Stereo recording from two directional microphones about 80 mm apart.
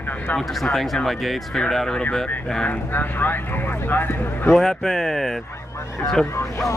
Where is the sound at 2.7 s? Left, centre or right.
Left.